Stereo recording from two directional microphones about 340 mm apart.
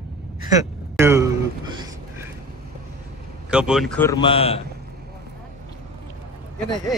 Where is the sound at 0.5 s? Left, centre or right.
Centre.